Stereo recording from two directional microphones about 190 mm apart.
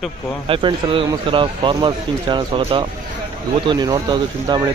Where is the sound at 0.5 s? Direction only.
25° right (ahead or behind).